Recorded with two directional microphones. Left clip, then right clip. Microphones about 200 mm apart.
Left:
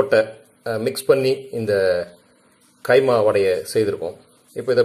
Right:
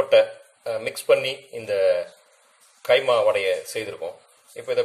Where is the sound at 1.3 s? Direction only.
Centre (ahead or behind).